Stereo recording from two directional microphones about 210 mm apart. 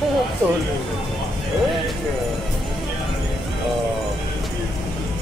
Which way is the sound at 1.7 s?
Centre (ahead or behind).